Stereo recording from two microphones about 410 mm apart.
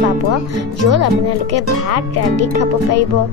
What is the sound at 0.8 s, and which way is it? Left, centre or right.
A child's voice, right.